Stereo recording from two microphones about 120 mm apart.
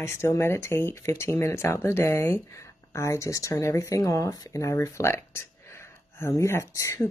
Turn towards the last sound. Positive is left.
turn(degrees=25)  # may be behind; listen again after turning